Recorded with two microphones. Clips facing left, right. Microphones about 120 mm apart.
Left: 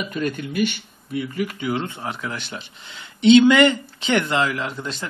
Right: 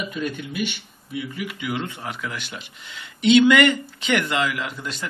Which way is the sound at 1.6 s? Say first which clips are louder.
Left 3 dB; 30° left (ahead or behind).